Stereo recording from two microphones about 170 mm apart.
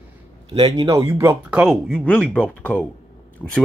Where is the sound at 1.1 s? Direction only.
10° right (ahead or behind).